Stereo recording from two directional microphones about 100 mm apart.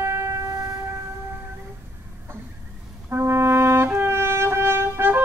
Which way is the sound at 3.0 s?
25° right (ahead or behind).